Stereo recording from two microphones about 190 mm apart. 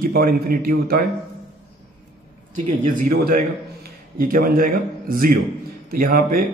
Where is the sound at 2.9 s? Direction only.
45° right (ahead or behind).